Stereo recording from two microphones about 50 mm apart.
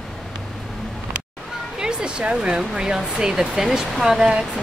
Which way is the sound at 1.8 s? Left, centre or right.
Centre.